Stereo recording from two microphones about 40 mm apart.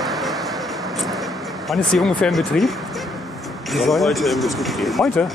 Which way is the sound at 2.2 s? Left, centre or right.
Centre.